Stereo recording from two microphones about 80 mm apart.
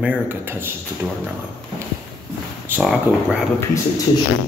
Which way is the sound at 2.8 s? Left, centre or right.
Centre.